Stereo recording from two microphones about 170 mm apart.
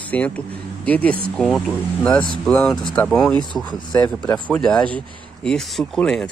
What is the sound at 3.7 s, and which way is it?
Speech, 25° left (ahead or behind).